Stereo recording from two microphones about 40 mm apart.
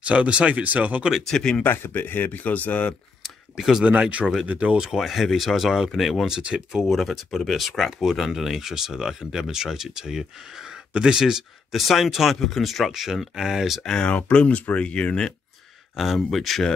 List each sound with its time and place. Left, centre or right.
0.0 s speech: right
1.3 s speech: left
1.6 s speech: left
3.5 s speech: centre
4.0 s speech: right
4.7 s speech: centre
6.2 s speech: centre
6.8 s speech: centre
11.7 s speech: centre
14.0 s speech: left
16.2 s speech: centre